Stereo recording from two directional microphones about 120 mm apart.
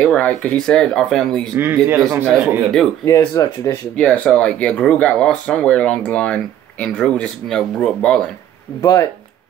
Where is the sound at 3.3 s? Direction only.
25° left (ahead or behind).